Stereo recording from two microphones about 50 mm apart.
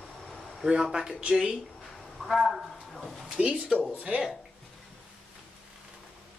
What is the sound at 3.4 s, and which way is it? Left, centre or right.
Speech, right.